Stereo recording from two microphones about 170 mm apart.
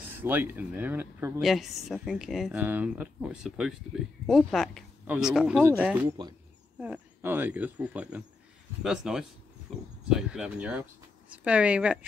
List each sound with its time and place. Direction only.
0.1 s speech: 10° right (ahead or behind)
1.4 s speech: centre (ahead or behind)
6.0 s speech: 25° right (ahead or behind)
6.8 s speech: 10° right (ahead or behind)